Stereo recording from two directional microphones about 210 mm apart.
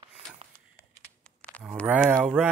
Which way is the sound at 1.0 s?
5° left (ahead or behind).